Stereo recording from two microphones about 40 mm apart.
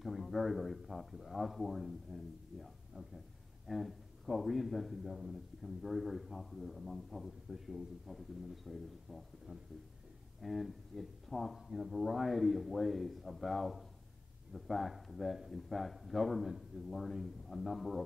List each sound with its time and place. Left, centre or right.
0.0 s a man's voice: centre
9.5 s speech: right
10.4 s a man's voice: centre